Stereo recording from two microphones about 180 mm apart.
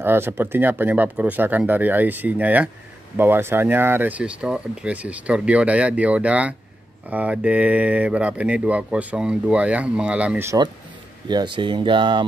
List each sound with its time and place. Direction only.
0.0 s speech: 10° right (ahead or behind)
11.2 s speech: 25° right (ahead or behind)